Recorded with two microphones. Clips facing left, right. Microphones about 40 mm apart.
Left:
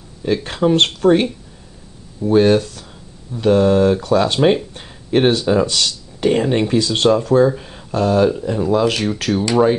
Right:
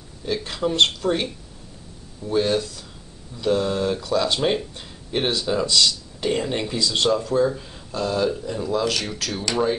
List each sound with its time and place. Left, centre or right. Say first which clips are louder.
0.2 s speech: left 7 dB; left
7.4 s speech: left 6 dB; left
7.9 s speech: left 8 dB; left
8.3 s speech: left 7 dB; left